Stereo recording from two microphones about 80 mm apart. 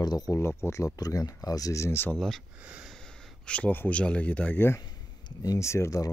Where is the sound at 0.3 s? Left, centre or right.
Left.